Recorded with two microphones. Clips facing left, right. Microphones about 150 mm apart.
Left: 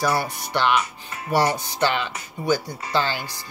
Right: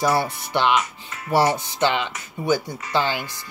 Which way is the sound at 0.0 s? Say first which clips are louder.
Right 2 dB; 25° right (ahead or behind).